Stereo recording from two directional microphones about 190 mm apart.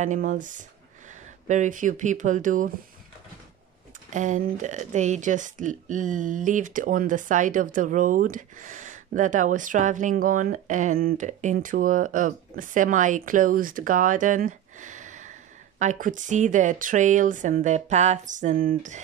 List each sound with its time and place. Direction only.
0.0 s speech: 40° right (ahead or behind)
4.1 s speech: 40° right (ahead or behind)